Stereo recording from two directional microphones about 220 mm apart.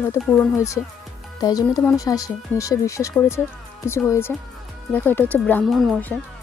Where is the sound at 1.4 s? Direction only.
15° left (ahead or behind).